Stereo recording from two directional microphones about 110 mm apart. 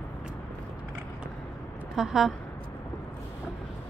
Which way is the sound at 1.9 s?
5° right (ahead or behind).